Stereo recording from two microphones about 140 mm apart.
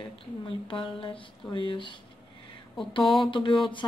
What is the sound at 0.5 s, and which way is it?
Speech, 40° left (ahead or behind).